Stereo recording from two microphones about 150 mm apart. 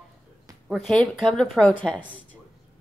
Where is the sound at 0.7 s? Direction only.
Centre (ahead or behind).